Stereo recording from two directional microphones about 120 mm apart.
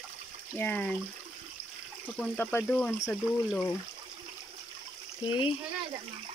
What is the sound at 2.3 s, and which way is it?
Speech, 15° left (ahead or behind).